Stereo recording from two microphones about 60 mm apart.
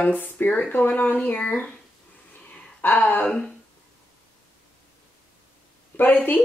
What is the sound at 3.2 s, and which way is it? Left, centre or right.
Speech, centre.